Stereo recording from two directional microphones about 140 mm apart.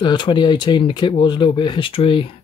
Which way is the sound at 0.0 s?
35° left (ahead or behind).